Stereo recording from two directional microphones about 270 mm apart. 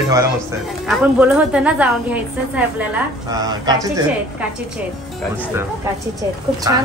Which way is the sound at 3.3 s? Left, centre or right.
Centre.